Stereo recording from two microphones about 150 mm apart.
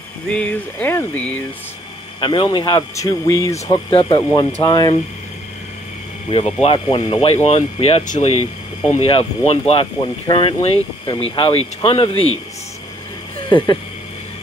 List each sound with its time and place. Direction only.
0.3 s speech: 10° left (ahead or behind)
2.1 s speech: 30° left (ahead or behind)
3.7 s speech: 35° left (ahead or behind)
6.3 s speech: 45° left (ahead or behind)
13.5 s speech: 35° left (ahead or behind)